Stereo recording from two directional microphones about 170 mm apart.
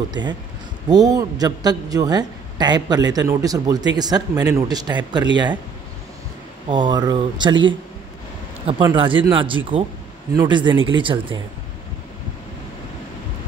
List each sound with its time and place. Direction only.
0.1 s a man's voice: 25° right (ahead or behind)
6.7 s a man's voice: 25° right (ahead or behind)